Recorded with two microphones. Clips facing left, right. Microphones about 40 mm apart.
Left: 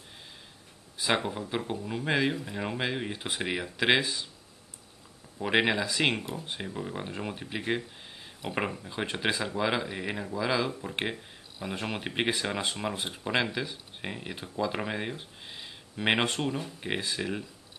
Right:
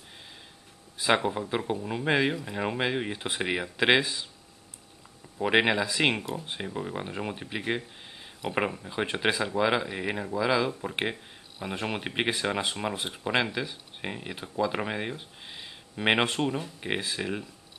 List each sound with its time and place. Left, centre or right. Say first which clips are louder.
1.0 s speech: right 4 dB; centre
5.4 s speech: right 2 dB; centre